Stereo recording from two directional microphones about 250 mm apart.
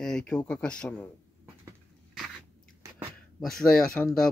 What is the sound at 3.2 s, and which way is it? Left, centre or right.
Speech, centre.